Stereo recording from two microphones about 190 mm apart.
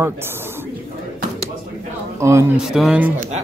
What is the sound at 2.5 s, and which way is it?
Speech, 5° right (ahead or behind).